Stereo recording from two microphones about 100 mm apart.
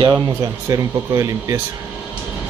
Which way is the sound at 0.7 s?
35° right (ahead or behind).